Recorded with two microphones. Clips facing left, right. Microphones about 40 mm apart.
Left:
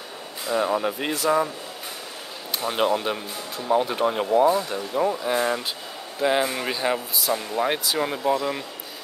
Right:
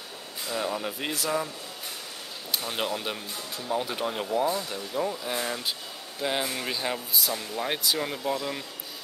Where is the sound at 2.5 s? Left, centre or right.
Centre.